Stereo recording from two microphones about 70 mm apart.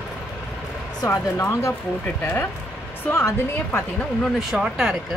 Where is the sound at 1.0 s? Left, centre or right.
Left.